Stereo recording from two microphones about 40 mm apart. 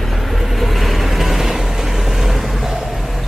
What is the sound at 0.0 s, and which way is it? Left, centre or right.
Vehicle, centre.